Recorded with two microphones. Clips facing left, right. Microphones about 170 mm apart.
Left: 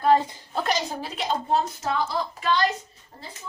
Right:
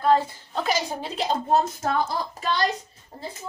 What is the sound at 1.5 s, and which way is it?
Speech, 50° right (ahead or behind).